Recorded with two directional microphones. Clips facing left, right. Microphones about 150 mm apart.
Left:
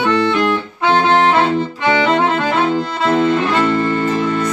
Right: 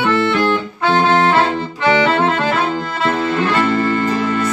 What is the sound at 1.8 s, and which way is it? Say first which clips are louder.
Music: right 2 dB; 20° left (ahead or behind).